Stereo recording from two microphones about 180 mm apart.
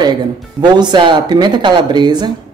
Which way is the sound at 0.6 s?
25° right (ahead or behind).